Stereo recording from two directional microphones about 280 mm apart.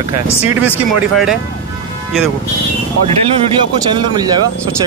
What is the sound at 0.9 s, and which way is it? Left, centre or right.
Speech, centre.